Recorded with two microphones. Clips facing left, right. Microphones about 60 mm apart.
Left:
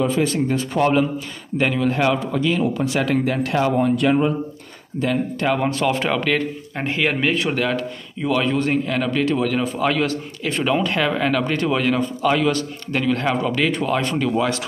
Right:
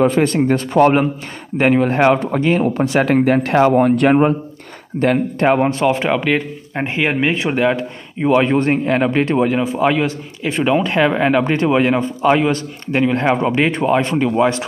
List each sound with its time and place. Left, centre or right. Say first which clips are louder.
0.0 s a man's voice: right 5 dB; right
5.4 s speech: right 6 dB; right
9.6 s speech: right 4 dB; centre